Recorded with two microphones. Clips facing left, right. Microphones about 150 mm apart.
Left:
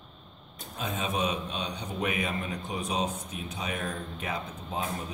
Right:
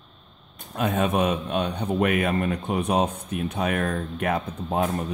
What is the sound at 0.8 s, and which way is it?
A man's voice, 60° right (ahead or behind).